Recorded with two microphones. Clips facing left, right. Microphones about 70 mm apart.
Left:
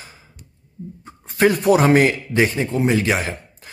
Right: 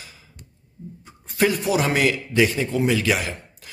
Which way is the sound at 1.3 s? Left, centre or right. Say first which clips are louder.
Left 5 dB; left.